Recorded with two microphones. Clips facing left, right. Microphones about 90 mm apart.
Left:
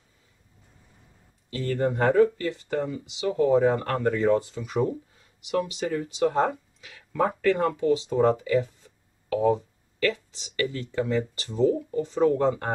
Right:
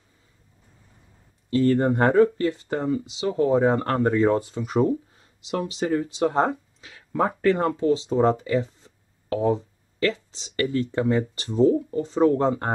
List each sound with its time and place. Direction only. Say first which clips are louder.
1.7 s speech: right 1 dB; 40° right (ahead or behind)
4.4 s speech: right 4 dB; 30° right (ahead or behind)
5.9 s speech: right 6 dB; 30° right (ahead or behind)
11.3 s speech: right 4 dB; 25° right (ahead or behind)